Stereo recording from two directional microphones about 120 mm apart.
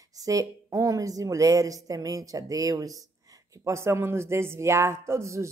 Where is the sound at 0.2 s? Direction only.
30° right (ahead or behind).